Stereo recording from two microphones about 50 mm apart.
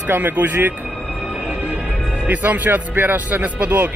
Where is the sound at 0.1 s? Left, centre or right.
Right.